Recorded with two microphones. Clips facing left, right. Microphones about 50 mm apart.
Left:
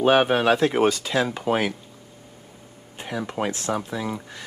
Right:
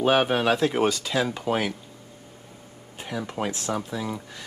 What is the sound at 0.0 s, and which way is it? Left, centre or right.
Speech, centre.